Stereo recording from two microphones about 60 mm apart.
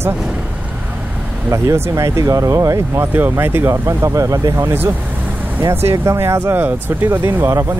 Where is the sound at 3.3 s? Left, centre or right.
Right.